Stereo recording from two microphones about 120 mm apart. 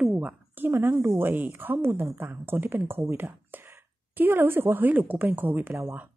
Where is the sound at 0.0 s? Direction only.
10° right (ahead or behind).